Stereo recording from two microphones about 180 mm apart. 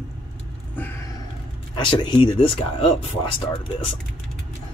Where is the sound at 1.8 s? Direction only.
25° left (ahead or behind).